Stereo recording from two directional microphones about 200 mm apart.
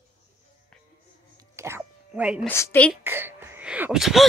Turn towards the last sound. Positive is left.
turn(degrees=0)  # may be behind; listen again after turning